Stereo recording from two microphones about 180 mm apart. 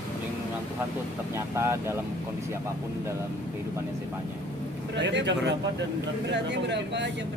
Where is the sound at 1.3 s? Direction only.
15° right (ahead or behind).